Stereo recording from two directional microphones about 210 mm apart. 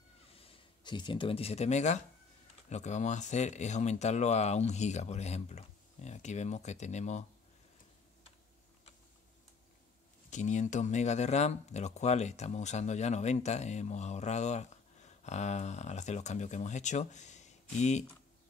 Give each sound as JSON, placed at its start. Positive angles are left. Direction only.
{"t": 0.3, "sound": "speech", "side_deg": 25}
{"t": 10.3, "sound": "speech", "side_deg": 35}